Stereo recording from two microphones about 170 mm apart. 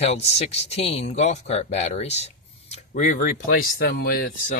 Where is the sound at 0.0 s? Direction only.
40° left (ahead or behind).